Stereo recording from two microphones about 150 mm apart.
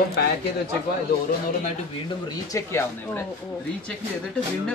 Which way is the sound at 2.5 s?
20° left (ahead or behind).